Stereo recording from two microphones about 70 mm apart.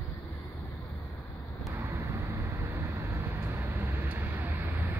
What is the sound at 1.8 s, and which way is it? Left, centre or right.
Vehicle, right.